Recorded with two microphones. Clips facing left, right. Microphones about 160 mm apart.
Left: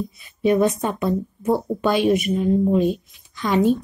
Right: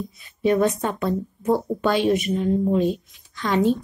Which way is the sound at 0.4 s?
10° left (ahead or behind).